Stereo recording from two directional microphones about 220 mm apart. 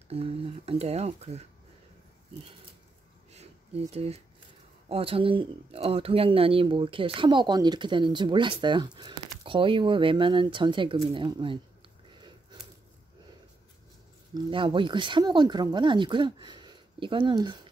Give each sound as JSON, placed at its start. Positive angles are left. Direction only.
{"t": 0.1, "sound": "speech", "side_deg": -25}
{"t": 3.3, "sound": "a sound", "side_deg": -30}
{"t": 4.8, "sound": "speech", "side_deg": -25}
{"t": 14.3, "sound": "speech", "side_deg": -20}